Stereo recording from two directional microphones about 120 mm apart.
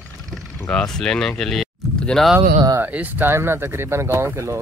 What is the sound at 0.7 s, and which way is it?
Speech, 5° left (ahead or behind).